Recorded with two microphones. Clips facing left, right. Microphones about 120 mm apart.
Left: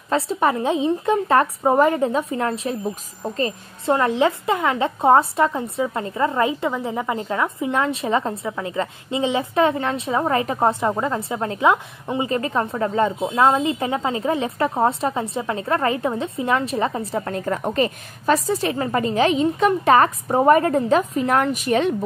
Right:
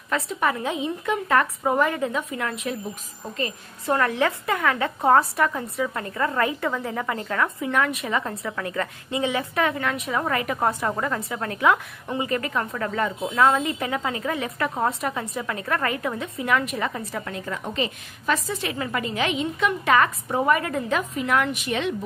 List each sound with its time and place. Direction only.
0.1 s a woman's voice: 30° left (ahead or behind)
3.9 s a woman's voice: 20° left (ahead or behind)
17.1 s a woman's voice: 40° left (ahead or behind)